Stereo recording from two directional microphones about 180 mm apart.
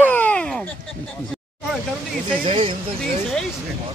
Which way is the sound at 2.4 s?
30° right (ahead or behind).